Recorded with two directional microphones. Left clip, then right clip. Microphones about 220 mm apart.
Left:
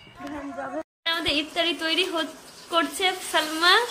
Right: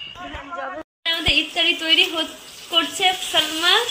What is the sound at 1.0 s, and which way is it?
A woman's voice, 10° left (ahead or behind).